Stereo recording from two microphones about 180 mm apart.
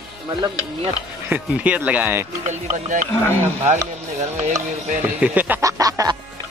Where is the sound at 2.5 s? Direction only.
45° right (ahead or behind).